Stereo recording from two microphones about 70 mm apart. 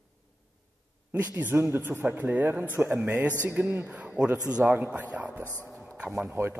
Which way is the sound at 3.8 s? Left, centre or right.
Centre.